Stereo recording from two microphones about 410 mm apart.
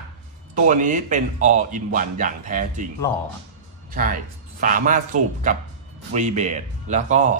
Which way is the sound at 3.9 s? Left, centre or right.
Centre.